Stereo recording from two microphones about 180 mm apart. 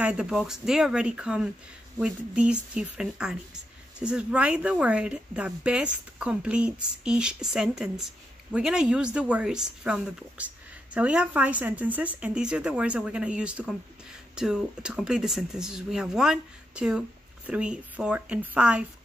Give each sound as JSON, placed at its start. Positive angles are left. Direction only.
{"t": 0.0, "sound": "speech", "side_deg": -5}